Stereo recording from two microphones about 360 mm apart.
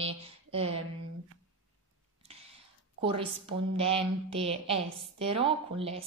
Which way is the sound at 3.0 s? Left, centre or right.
Centre.